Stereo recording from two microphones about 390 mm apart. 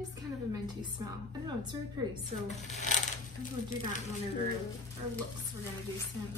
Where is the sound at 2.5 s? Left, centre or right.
Centre.